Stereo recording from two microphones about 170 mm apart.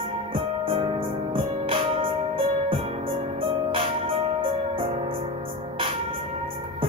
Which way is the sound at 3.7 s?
30° right (ahead or behind).